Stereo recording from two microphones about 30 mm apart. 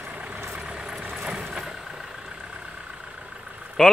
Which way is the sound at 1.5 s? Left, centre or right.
Right.